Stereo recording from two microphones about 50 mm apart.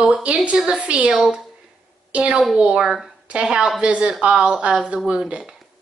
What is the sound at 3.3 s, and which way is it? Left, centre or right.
Speech, centre.